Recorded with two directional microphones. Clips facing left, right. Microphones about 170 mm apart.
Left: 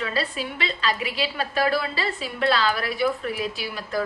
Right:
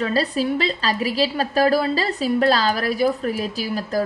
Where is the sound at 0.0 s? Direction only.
40° right (ahead or behind).